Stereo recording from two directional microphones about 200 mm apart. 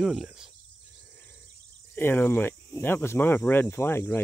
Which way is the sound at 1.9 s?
10° left (ahead or behind).